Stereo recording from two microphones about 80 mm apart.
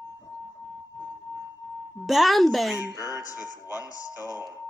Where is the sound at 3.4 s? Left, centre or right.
Left.